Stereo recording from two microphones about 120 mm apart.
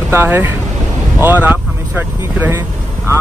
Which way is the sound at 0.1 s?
20° right (ahead or behind).